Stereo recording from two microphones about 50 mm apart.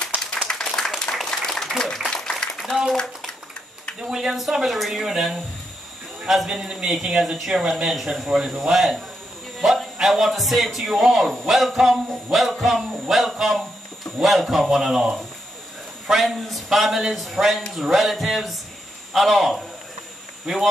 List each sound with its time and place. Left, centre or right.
0.5 s applause: centre
1.1 s a sound: centre
4.0 s a man's voice: centre
16.1 s a man's voice: centre